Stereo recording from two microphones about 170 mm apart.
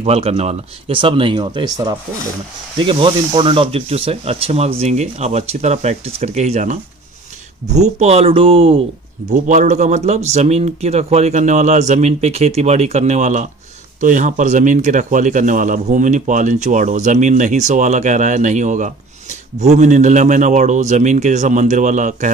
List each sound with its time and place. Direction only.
0.0 s speech: 35° right (ahead or behind)
9.5 s speech: 45° right (ahead or behind)